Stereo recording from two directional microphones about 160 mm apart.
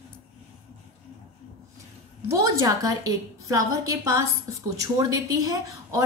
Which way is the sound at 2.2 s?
20° right (ahead or behind).